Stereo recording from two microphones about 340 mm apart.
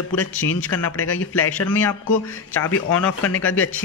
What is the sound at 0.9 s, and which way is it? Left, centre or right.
Speech, left.